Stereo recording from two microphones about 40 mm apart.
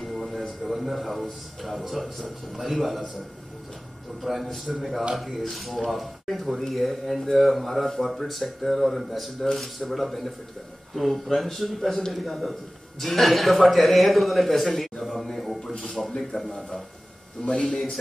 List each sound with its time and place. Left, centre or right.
0.0 s a man's voice: centre
4.2 s a man's voice: centre
17.4 s a man's voice: centre